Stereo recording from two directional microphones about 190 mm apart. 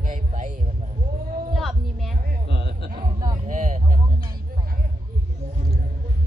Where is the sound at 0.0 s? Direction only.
45° right (ahead or behind).